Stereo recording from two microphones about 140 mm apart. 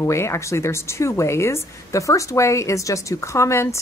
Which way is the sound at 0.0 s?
20° left (ahead or behind).